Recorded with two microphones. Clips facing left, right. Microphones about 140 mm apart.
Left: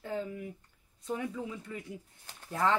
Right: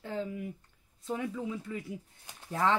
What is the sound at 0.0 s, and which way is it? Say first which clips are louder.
Speech: right 1 dB; centre (ahead or behind).